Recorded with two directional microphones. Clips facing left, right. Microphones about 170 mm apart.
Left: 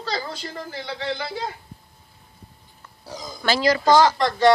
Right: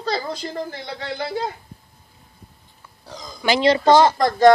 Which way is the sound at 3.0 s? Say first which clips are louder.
Left 2 dB; 5° left (ahead or behind).